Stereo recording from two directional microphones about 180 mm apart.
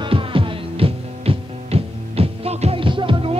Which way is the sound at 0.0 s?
30° right (ahead or behind).